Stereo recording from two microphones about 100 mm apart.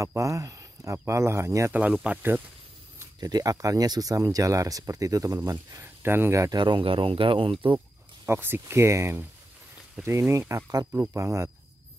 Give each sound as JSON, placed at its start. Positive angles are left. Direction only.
{"t": 0.0, "sound": "speech", "side_deg": -30}
{"t": 1.7, "sound": "speech", "side_deg": -15}
{"t": 3.2, "sound": "speech", "side_deg": -40}
{"t": 6.0, "sound": "speech", "side_deg": -20}
{"t": 6.5, "sound": "speech", "side_deg": -50}
{"t": 8.3, "sound": "speech", "side_deg": -25}